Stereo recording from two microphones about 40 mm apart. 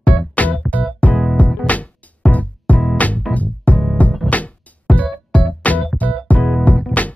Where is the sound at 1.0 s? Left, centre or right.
Left.